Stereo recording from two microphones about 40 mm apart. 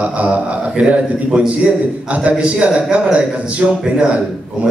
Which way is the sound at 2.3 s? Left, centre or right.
Right.